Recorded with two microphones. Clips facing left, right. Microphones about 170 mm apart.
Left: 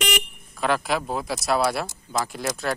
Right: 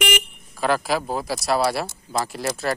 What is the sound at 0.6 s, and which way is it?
Speech, centre (ahead or behind).